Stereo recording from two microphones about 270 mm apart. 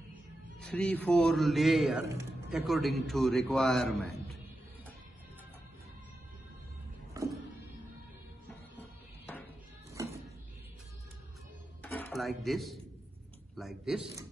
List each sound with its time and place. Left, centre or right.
0.1 s a man's voice: centre
11.8 s a sound: centre
13.6 s a man's voice: centre